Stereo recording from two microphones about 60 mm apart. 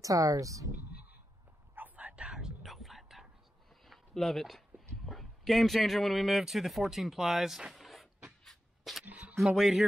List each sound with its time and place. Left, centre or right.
0.0 s speech: right
1.8 s whispering: right
2.3 s whispering: centre
3.8 s a sound: centre
9.0 s single-lens reflex camera: right
9.5 s speech: centre